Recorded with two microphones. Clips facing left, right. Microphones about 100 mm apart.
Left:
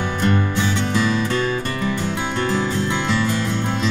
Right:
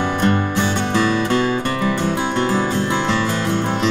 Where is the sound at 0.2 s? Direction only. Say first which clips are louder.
Even; 55° right (ahead or behind).